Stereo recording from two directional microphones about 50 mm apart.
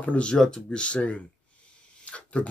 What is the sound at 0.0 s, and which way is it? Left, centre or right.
Speech, left.